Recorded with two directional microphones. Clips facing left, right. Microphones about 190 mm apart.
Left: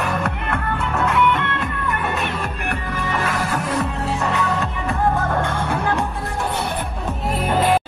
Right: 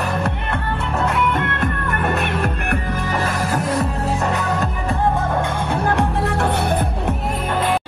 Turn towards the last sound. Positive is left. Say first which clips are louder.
# right 5 dB
turn(degrees=-60)  # may be behind; listen again after turning